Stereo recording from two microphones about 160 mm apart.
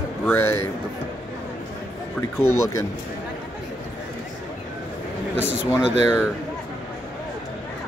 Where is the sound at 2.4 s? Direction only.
15° left (ahead or behind).